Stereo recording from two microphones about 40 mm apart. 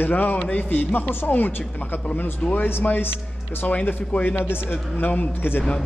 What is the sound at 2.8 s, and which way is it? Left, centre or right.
Speech, left.